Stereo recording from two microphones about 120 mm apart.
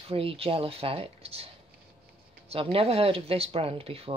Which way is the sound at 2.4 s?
55° right (ahead or behind).